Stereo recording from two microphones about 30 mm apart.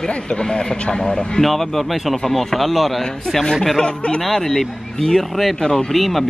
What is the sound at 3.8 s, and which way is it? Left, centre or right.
Speech, left.